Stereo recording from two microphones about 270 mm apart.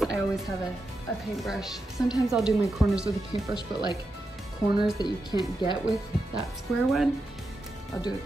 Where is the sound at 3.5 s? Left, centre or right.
Centre.